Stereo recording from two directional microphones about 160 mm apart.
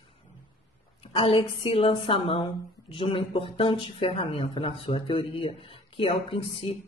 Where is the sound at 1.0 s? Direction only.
35° left (ahead or behind).